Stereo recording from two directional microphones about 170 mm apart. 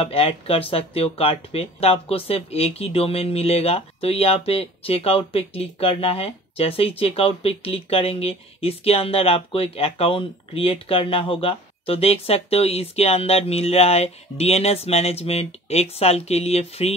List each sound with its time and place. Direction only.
0.0 s speech: 35° left (ahead or behind)